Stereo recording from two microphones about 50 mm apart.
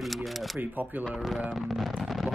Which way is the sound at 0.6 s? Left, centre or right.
Right.